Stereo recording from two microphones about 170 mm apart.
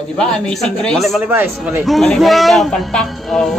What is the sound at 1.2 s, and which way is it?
Speech, 10° right (ahead or behind).